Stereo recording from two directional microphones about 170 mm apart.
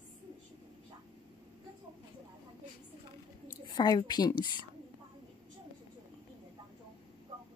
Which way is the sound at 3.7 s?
25° left (ahead or behind).